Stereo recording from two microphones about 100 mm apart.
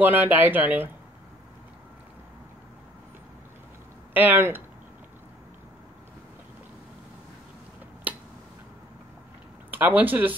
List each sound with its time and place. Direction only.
0.0 s speech: 20° right (ahead or behind)
4.1 s speech: 20° right (ahead or behind)
8.1 s a sound: 15° right (ahead or behind)
9.7 s speech: 15° right (ahead or behind)